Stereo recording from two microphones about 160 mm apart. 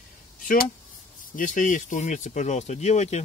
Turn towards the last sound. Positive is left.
turn(degrees=45)  # may be behind; listen again after turning